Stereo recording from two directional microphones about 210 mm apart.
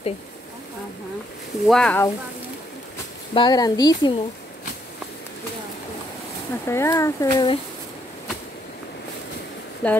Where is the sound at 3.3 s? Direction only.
20° left (ahead or behind).